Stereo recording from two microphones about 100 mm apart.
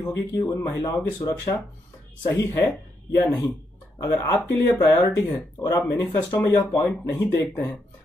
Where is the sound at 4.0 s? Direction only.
30° left (ahead or behind).